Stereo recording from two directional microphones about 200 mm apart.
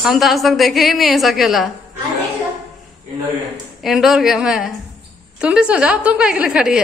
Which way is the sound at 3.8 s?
Centre (ahead or behind).